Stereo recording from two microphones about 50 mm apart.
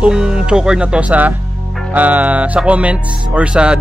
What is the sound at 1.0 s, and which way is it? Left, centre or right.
Music, right.